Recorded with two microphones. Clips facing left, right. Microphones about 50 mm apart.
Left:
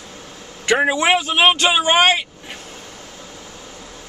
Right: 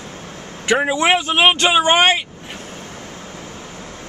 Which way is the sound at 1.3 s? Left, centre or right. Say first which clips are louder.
Right 1 dB; centre.